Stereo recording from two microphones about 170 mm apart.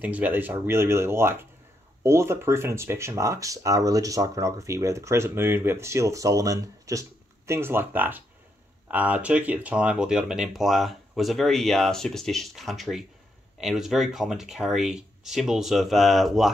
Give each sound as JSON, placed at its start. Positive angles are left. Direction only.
{"t": 0.0, "sound": "speech", "side_deg": -10}